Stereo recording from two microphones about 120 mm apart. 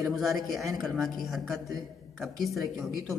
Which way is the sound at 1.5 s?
30° right (ahead or behind).